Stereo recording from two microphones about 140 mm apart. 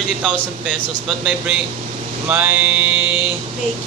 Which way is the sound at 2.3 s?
10° right (ahead or behind).